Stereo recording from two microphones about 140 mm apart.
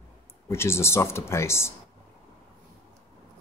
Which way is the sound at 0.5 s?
20° left (ahead or behind).